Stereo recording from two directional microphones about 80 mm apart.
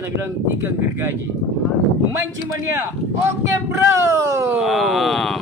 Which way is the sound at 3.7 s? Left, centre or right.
Right.